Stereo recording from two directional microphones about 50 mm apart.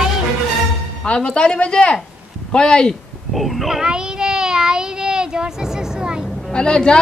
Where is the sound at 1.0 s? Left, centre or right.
Centre.